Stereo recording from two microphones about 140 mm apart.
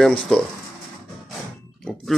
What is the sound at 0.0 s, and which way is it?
Speech, 5° left (ahead or behind).